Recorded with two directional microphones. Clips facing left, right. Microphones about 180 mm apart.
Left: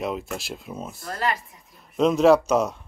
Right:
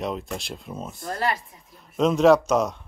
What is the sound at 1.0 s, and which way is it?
Speech, 40° right (ahead or behind).